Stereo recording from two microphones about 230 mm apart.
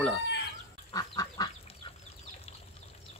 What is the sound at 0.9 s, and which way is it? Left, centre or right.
Duck, centre.